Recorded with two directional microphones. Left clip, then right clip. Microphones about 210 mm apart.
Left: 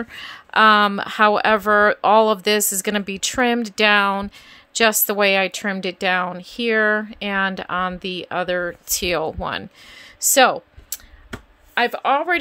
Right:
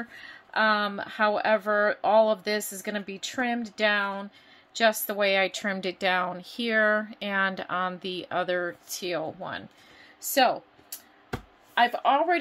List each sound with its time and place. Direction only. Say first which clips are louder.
0.0 s a woman's voice: left 9 dB; 45° left (ahead or behind)
11.7 s speech: left 4 dB; 55° left (ahead or behind)